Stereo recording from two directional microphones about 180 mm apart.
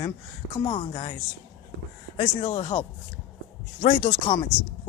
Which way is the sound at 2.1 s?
35° left (ahead or behind).